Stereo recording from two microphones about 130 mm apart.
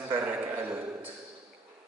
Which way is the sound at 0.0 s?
15° right (ahead or behind).